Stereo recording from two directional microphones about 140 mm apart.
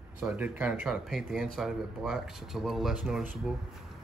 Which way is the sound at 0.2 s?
10° right (ahead or behind).